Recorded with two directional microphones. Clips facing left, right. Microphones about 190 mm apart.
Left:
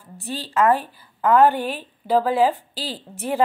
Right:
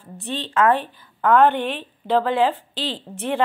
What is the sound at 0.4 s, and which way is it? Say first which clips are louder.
A woman's voice: even; 5° left (ahead or behind).